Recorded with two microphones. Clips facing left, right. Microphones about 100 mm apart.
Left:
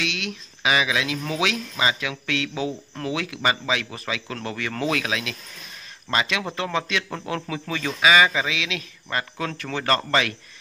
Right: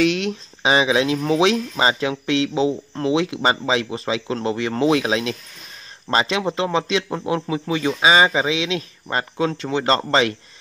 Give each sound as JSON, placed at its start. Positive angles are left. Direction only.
{"t": 0.0, "sound": "speech", "side_deg": -35}